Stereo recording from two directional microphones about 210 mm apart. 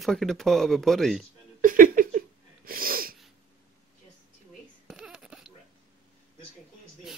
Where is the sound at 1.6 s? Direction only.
40° right (ahead or behind).